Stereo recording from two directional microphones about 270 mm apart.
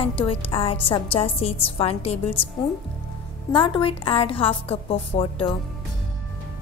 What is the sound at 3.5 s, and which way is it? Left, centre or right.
A woman's voice, centre.